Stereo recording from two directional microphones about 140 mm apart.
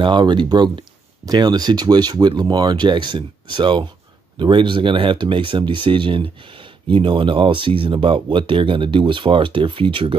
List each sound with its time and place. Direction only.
0.0 s speech: 35° right (ahead or behind)